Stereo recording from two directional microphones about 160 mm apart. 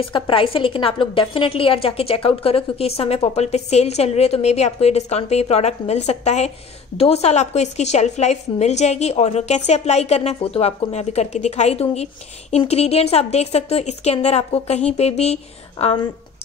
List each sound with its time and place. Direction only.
0.0 s a woman's voice: 35° left (ahead or behind)